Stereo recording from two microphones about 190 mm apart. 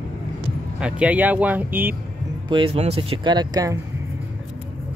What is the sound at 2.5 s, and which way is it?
Speech, 30° right (ahead or behind).